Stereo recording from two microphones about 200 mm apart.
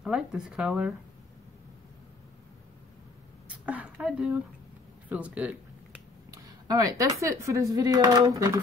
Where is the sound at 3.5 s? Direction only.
5° right (ahead or behind).